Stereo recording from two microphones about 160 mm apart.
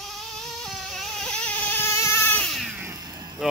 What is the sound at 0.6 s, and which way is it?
Vehicle, centre (ahead or behind).